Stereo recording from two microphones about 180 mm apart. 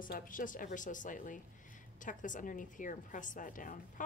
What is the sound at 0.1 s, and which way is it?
A woman's voice, 50° left (ahead or behind).